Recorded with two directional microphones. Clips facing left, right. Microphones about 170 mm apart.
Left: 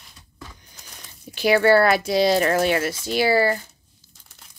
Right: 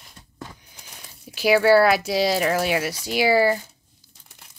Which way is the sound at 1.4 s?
5° right (ahead or behind).